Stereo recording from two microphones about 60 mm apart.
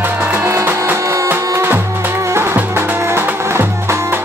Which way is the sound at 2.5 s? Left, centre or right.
Right.